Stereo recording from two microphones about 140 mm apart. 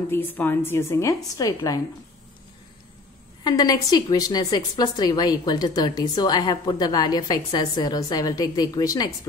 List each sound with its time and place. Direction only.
0.1 s a woman's voice: 15° left (ahead or behind)
3.4 s a woman's voice: 30° left (ahead or behind)